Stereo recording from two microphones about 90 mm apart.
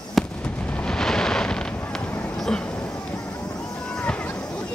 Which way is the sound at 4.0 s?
15° left (ahead or behind).